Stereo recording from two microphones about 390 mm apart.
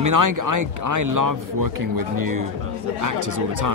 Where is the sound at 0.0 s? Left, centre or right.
Right.